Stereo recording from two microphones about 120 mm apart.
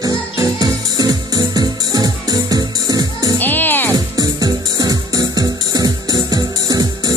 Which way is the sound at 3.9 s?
30° right (ahead or behind).